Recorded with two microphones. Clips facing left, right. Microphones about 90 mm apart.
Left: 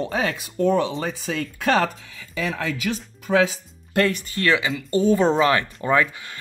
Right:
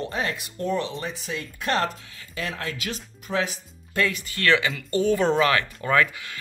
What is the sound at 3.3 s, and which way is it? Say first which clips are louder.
Speech: left 7 dB; 65° left (ahead or behind).